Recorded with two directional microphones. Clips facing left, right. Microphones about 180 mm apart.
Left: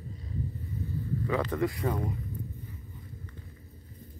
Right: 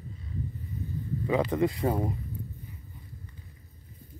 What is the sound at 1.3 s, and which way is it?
Speech, 15° right (ahead or behind).